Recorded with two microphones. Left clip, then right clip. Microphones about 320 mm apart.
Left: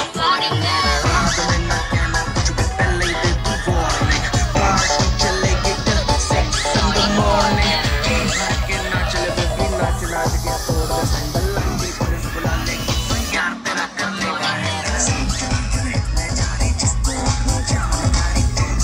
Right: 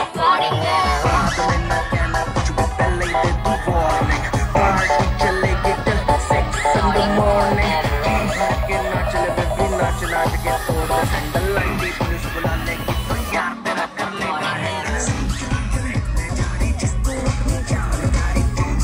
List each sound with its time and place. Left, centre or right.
0.2 s music: centre; by 12.5 s right
13.3 s music: centre